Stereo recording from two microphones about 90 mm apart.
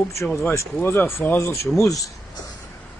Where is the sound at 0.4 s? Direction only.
30° left (ahead or behind).